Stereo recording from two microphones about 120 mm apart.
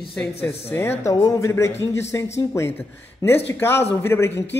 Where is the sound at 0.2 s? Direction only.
20° left (ahead or behind).